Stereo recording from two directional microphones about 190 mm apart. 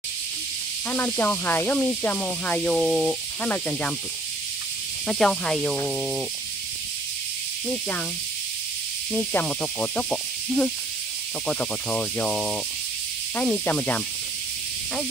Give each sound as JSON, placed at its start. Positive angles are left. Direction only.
{"t": 0.8, "sound": "speech", "side_deg": 10}
{"t": 5.0, "sound": "speech", "side_deg": 5}
{"t": 7.6, "sound": "speech", "side_deg": 5}
{"t": 9.1, "sound": "speech", "side_deg": 10}